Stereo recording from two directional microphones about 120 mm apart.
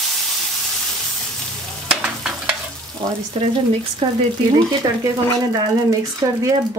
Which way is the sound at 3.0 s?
45° right (ahead or behind).